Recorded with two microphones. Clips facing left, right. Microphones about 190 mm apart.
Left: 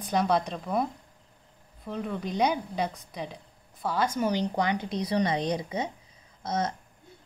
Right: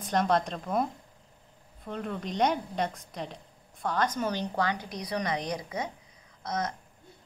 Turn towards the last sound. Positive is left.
turn(degrees=30)  # may be behind; listen again after turning